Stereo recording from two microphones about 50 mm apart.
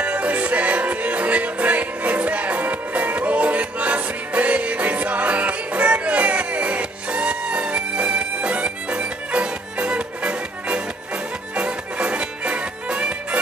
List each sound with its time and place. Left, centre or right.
0.0 s music: right